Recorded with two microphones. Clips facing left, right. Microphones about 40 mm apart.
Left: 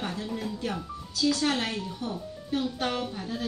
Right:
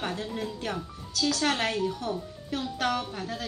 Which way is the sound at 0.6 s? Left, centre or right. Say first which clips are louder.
Left 1 dB; right.